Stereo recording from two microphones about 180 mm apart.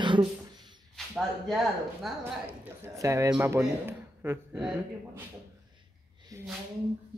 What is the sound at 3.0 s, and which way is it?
A man's voice, 15° right (ahead or behind).